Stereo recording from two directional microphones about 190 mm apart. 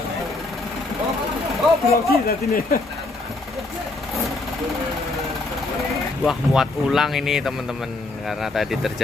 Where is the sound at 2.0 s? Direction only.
50° left (ahead or behind).